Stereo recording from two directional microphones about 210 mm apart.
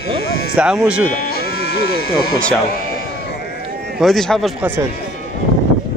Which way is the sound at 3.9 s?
Centre (ahead or behind).